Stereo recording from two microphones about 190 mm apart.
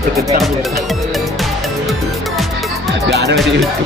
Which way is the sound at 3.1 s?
65° right (ahead or behind).